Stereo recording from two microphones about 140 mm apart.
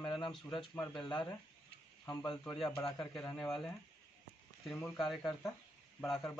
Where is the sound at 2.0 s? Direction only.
25° left (ahead or behind).